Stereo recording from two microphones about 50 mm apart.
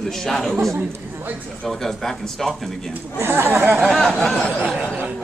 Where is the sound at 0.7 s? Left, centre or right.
Right.